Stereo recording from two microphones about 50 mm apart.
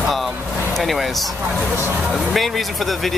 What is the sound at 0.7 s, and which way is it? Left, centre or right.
Speech, centre.